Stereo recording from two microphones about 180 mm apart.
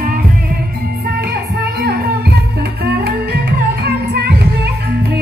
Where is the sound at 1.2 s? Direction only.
60° right (ahead or behind).